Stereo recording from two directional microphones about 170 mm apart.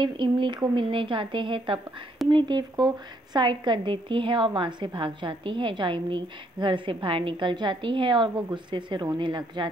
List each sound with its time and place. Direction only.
0.0 s a woman's voice: 25° right (ahead or behind)